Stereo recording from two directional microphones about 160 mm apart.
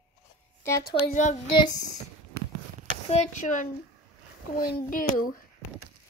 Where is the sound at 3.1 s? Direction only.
45° left (ahead or behind).